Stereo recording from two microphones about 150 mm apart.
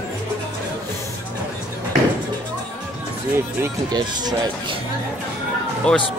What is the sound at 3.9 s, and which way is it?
Speech, 25° right (ahead or behind).